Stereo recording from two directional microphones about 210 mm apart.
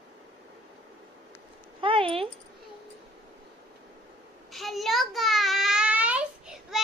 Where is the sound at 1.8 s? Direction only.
25° right (ahead or behind).